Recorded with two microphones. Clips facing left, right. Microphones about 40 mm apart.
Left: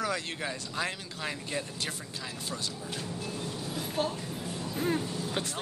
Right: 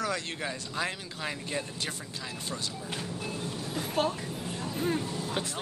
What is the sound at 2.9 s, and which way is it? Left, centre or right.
Speech, right.